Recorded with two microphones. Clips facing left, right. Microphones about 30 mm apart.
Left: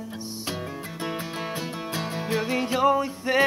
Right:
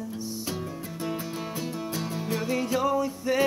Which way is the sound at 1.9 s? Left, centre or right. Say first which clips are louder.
Left 5 dB; left.